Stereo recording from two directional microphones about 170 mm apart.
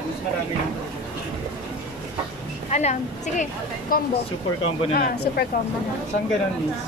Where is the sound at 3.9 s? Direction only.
55° left (ahead or behind).